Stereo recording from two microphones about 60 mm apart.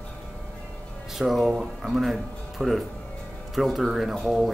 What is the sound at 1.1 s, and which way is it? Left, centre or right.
Speech, centre.